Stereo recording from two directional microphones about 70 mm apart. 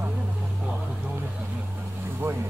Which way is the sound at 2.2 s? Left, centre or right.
Right.